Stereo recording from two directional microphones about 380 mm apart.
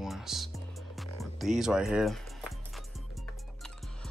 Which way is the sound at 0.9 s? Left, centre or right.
Centre.